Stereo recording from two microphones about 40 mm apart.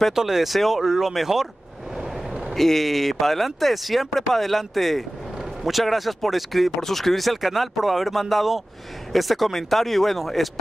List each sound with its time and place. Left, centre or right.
0.1 s speech: centre
2.0 s vehicle: centre
2.5 s speech: centre